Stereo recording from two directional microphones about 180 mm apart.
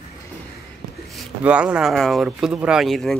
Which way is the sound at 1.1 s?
5° right (ahead or behind).